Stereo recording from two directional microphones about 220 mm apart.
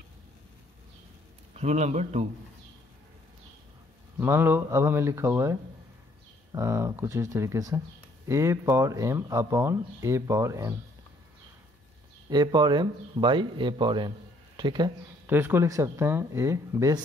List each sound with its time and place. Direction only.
1.5 s speech: 30° right (ahead or behind)
4.2 s speech: 10° right (ahead or behind)
12.3 s speech: 20° right (ahead or behind)
15.2 s speech: 10° right (ahead or behind)